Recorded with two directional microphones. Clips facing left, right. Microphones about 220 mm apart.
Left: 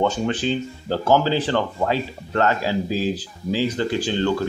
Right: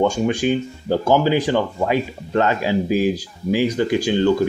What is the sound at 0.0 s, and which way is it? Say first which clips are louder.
Speech: right 3 dB; 10° right (ahead or behind).